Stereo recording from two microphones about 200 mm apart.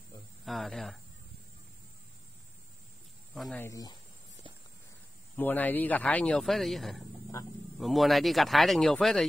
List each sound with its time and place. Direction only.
0.5 s speech: centre (ahead or behind)
3.3 s speech: centre (ahead or behind)
3.6 s speech: 15° left (ahead or behind)
5.3 s speech: 10° left (ahead or behind)